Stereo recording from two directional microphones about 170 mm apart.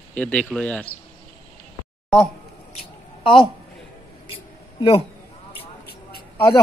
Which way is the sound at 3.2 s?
30° left (ahead or behind).